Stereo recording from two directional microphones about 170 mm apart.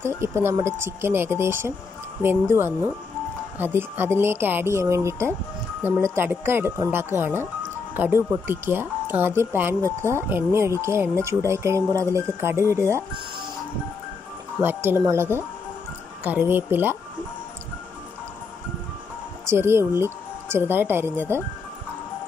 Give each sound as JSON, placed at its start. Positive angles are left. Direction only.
{"t": 0.0, "sound": "speech", "side_deg": -15}
{"t": 3.5, "sound": "speech", "side_deg": -10}
{"t": 14.6, "sound": "speech", "side_deg": -15}
{"t": 19.4, "sound": "speech", "side_deg": -15}